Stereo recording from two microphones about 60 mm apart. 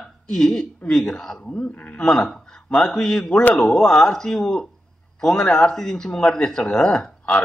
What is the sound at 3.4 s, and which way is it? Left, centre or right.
Speech, left.